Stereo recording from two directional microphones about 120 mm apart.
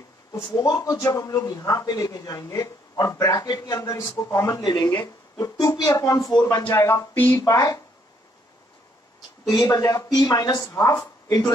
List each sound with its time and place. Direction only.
0.5 s speech: 30° left (ahead or behind)
7.4 s speech: 30° left (ahead or behind)
9.5 s speech: 25° left (ahead or behind)